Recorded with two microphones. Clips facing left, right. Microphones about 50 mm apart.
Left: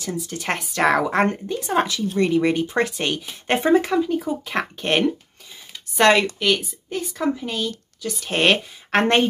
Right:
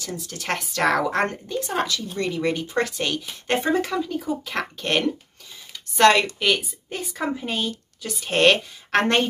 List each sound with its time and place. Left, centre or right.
0.0 s speech: centre
5.7 s a sound: centre
6.4 s a woman's voice: centre
8.3 s speech: centre